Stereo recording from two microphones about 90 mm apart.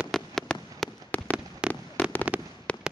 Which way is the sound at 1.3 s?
10° right (ahead or behind).